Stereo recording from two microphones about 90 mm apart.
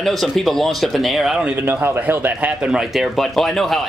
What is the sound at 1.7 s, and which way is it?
Speech, 20° right (ahead or behind).